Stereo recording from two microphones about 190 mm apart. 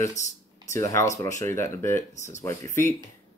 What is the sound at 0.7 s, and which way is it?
Speech, 15° left (ahead or behind).